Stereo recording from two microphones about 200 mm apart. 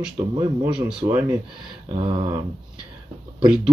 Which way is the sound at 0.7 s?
5° right (ahead or behind).